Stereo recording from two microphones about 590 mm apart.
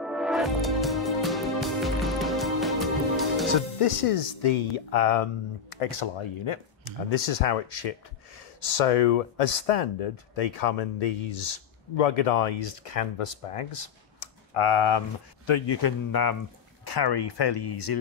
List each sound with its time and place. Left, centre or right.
0.0 s music: centre
3.5 s speech: left
5.9 s speech: left
7.1 s speech: left